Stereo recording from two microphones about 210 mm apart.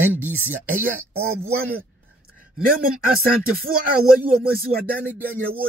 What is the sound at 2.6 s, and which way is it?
Speech, 45° right (ahead or behind).